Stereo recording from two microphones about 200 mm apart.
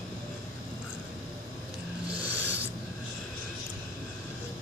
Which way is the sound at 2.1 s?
10° right (ahead or behind).